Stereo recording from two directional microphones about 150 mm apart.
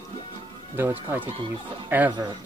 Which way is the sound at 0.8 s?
15° right (ahead or behind).